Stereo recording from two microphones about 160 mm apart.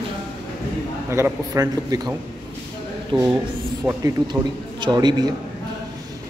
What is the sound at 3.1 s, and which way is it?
Speech, 30° right (ahead or behind).